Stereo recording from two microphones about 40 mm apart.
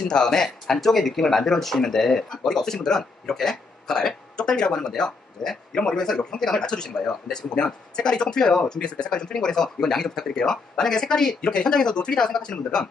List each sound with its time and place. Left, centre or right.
0.1 s speech: centre